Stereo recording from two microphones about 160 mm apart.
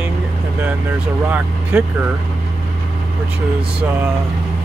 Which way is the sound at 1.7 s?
5° right (ahead or behind).